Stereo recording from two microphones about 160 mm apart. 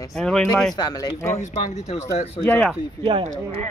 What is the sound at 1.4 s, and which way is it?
Speech, 45° left (ahead or behind).